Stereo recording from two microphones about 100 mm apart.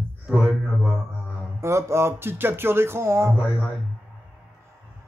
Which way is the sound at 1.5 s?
30° right (ahead or behind).